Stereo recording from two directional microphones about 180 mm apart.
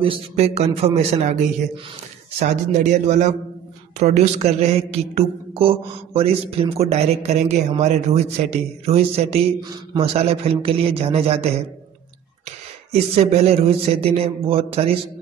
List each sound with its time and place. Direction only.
0.0 s speech: 30° right (ahead or behind)
13.1 s speech: 35° right (ahead or behind)